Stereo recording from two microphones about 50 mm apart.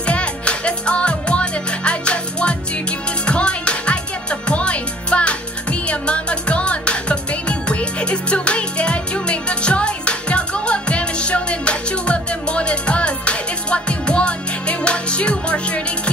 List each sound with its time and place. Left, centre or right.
0.0 s music: left